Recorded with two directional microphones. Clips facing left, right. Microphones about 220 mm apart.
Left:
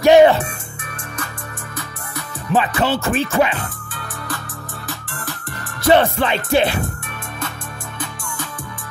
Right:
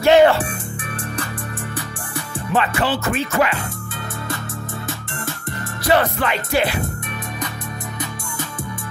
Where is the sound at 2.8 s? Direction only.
25° left (ahead or behind).